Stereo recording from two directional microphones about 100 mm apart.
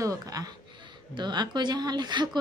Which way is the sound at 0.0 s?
35° right (ahead or behind).